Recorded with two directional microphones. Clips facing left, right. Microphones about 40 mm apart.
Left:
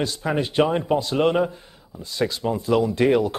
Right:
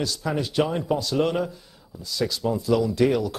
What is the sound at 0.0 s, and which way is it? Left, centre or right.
Speech, left.